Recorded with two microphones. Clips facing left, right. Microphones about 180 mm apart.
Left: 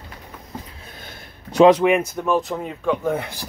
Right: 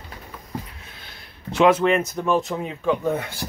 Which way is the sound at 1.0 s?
40° left (ahead or behind).